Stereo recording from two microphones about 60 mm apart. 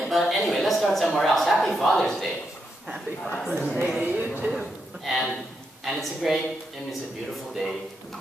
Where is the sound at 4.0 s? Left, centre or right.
Right.